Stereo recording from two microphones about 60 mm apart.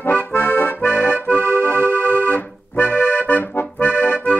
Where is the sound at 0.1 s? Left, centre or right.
Left.